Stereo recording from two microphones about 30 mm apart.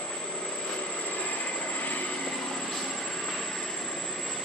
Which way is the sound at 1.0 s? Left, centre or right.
Left.